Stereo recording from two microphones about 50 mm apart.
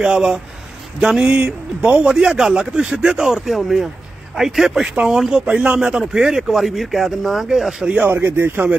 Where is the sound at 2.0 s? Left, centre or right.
Centre.